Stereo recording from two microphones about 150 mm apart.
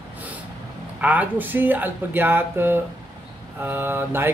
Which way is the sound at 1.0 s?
10° right (ahead or behind).